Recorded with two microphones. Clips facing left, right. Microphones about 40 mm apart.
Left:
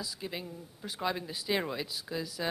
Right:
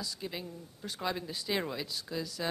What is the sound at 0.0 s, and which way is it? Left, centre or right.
Speech, centre.